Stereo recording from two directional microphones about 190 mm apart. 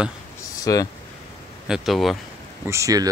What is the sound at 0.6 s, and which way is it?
Speech, 20° left (ahead or behind).